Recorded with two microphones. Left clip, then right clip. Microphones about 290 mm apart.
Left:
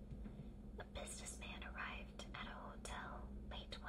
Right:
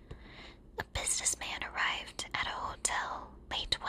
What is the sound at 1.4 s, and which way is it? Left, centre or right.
Whispering, right.